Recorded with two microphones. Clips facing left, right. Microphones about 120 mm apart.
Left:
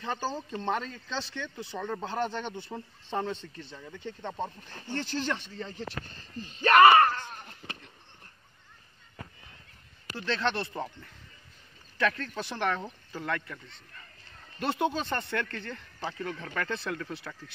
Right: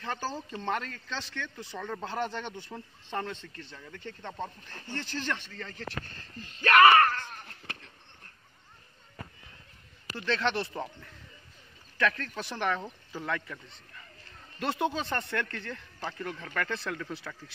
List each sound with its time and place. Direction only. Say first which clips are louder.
0.0 s speech: left 2 dB; 15° left (ahead or behind)
1.7 s speech: left 3 dB; 5° left (ahead or behind)
2.1 s speech: left 1 dB; 15° left (ahead or behind)
10.1 s speech: even; centre (ahead or behind)
14.6 s speech: left 1 dB; centre (ahead or behind)